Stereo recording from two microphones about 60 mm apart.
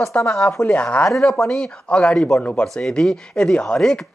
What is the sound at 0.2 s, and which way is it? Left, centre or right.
Speech, left.